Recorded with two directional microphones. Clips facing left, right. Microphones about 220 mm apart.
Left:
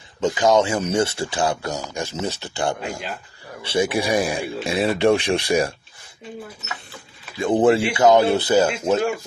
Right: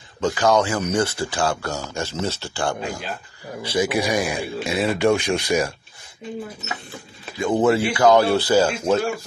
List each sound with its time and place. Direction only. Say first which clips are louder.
0.2 s speech: left 1 dB; 20° left (ahead or behind)
7.3 s speech: left 2 dB; 30° left (ahead or behind)